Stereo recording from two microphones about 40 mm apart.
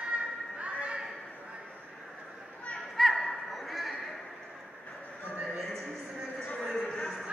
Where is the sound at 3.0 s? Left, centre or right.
Centre.